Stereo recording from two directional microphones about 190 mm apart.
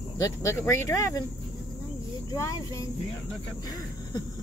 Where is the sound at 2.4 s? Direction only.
15° left (ahead or behind).